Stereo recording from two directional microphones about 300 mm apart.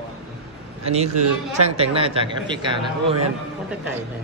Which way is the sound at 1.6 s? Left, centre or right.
Centre.